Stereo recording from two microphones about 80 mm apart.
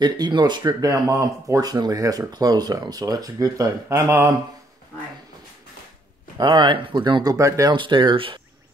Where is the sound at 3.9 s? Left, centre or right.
Right.